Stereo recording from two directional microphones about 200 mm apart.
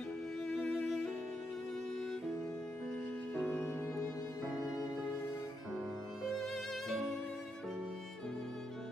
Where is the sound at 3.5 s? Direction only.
10° left (ahead or behind).